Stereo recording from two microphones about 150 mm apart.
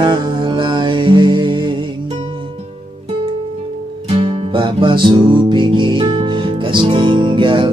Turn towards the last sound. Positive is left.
turn(degrees=-35)  # may be behind; listen again after turning